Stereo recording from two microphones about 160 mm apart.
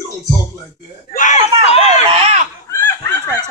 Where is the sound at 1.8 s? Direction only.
40° right (ahead or behind).